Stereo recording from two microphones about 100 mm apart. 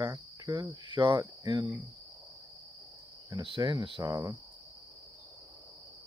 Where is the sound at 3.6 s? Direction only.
45° right (ahead or behind).